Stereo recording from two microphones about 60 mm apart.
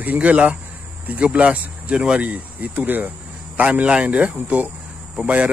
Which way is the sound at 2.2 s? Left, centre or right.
Right.